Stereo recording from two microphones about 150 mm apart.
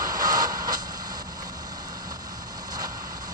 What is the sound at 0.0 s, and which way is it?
Vehicle, 25° right (ahead or behind).